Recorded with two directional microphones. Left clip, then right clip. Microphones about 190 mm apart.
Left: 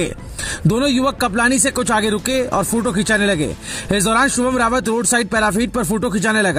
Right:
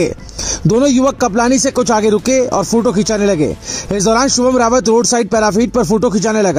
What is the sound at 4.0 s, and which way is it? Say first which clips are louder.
Speech: right 3 dB; 40° left (ahead or behind).